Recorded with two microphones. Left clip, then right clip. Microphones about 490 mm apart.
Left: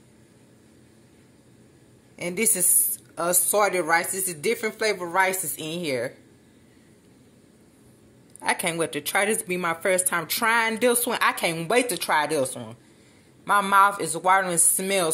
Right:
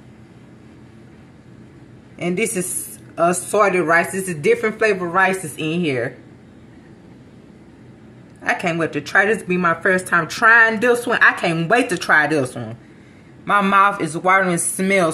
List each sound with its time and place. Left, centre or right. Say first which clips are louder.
2.1 s a woman's voice: right 6 dB; left
8.4 s a woman's voice: right 5 dB; left